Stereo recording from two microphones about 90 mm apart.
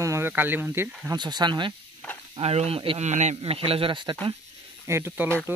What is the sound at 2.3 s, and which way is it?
Speech, 80° right.